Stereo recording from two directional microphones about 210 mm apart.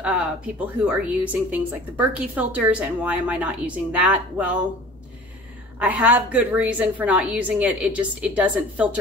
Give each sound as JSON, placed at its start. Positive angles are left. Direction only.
{"t": 0.0, "sound": "a sound", "side_deg": -5}
{"t": 0.7, "sound": "a woman's voice", "side_deg": -5}
{"t": 5.8, "sound": "a woman's voice", "side_deg": -5}